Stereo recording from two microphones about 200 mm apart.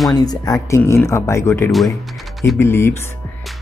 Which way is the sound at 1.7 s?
Centre (ahead or behind).